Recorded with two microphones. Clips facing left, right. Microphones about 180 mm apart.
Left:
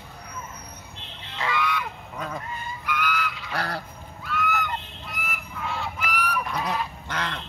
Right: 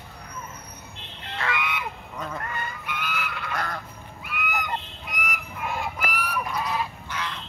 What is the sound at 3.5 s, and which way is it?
Goose, 35° left (ahead or behind).